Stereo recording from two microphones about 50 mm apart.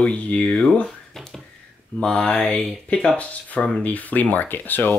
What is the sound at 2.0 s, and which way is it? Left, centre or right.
Speech, left.